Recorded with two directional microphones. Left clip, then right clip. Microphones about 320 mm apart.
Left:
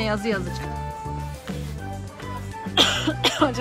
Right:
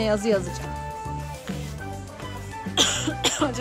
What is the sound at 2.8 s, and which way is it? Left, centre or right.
Cough, centre.